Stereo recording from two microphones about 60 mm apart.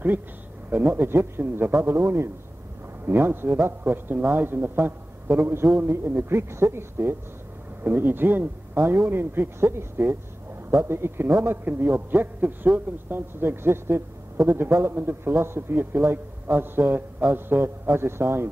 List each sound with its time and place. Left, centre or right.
0.7 s a man's voice: right